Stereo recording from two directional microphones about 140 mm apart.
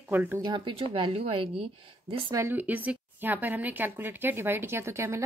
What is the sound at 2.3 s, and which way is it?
A woman's voice, 15° right (ahead or behind).